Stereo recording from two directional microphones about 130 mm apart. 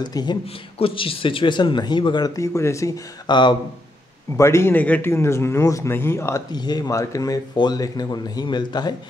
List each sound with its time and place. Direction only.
0.0 s speech: 35° left (ahead or behind)
0.7 s speech: 45° left (ahead or behind); by 2.9 s 25° left (ahead or behind)
3.3 s speech: 35° left (ahead or behind)
4.4 s a man's voice: 20° left (ahead or behind)
6.5 s speech: 30° left (ahead or behind)